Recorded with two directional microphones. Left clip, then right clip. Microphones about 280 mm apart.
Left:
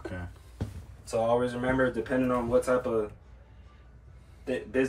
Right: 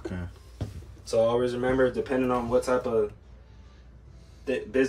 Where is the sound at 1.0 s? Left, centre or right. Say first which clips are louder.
Right 3 dB; centre.